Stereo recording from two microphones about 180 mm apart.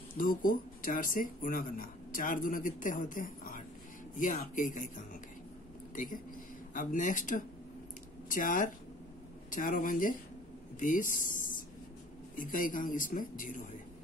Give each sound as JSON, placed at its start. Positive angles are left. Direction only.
{"t": 0.2, "sound": "speech", "side_deg": 50}
{"t": 6.7, "sound": "speech", "side_deg": 50}